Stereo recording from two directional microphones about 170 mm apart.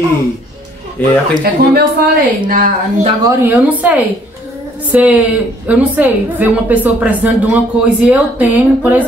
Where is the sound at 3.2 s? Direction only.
15° right (ahead or behind).